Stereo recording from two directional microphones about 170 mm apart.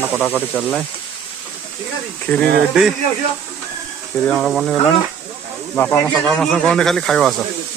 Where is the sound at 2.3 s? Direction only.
15° left (ahead or behind).